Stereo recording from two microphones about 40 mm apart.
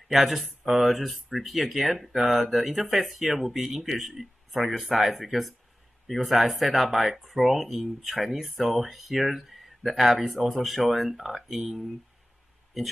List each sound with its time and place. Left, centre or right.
0.1 s speech: centre